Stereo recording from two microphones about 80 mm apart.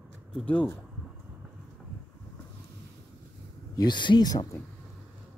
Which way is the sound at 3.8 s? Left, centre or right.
Left.